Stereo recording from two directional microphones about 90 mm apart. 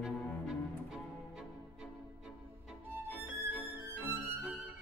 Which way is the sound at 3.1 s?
20° right (ahead or behind).